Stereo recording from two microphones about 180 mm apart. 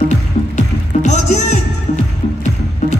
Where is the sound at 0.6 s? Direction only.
40° left (ahead or behind).